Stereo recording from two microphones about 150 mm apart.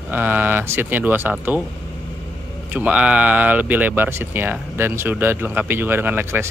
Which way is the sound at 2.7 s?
10° right (ahead or behind).